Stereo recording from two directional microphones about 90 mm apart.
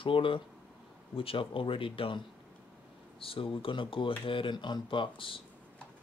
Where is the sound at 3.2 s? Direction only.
85° left.